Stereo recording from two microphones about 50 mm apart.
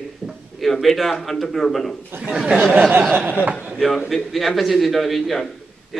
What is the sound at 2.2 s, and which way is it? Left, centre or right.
Speech, centre.